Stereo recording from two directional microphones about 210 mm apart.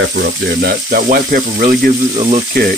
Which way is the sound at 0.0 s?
55° right (ahead or behind).